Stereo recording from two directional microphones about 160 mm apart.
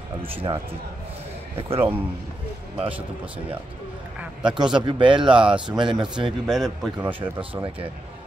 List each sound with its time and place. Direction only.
0.2 s speech: 35° right (ahead or behind)
1.6 s speech: 35° right (ahead or behind)
4.2 s a man's voice: 5° right (ahead or behind)
4.8 s speech: 30° right (ahead or behind)
5.2 s a man's voice: 5° right (ahead or behind)
5.7 s a man's voice: 30° right (ahead or behind)
6.4 s a man's voice: centre (ahead or behind)
7.3 s speech: 35° right (ahead or behind)